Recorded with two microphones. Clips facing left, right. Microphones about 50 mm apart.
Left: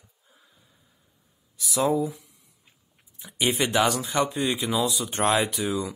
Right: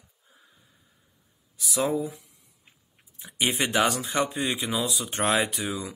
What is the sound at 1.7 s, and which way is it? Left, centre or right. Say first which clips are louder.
Speech: left 3 dB; centre.